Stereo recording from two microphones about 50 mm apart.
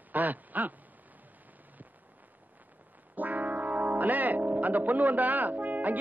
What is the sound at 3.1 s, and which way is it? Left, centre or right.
Music, right.